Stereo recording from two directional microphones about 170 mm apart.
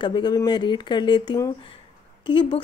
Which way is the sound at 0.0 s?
25° left (ahead or behind).